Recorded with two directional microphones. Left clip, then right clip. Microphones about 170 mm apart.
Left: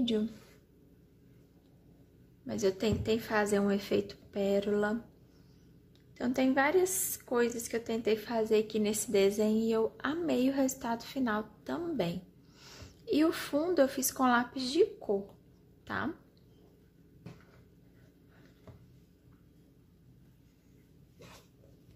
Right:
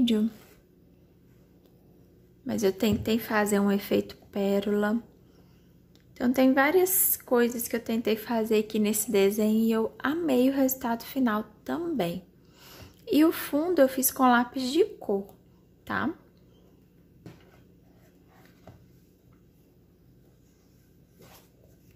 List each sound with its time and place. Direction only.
2.4 s a woman's voice: 20° right (ahead or behind)
6.1 s a woman's voice: 15° right (ahead or behind)